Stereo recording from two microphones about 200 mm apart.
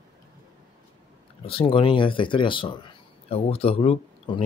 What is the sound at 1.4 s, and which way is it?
Speech, 25° left (ahead or behind).